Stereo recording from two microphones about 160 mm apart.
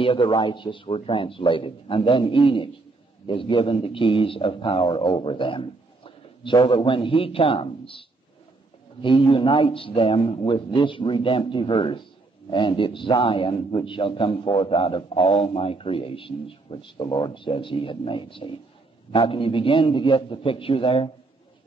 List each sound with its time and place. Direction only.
0.0 s a man's voice: 30° left (ahead or behind)
9.0 s a man's voice: 30° left (ahead or behind)